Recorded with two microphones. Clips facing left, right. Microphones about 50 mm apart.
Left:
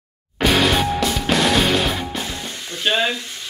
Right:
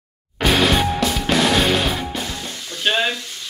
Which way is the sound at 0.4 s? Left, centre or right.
Centre.